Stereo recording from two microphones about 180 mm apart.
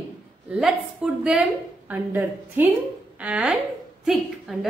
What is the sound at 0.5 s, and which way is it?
A woman's voice, 5° right (ahead or behind).